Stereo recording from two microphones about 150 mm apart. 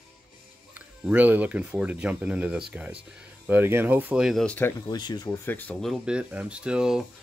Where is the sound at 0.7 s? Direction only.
10° right (ahead or behind).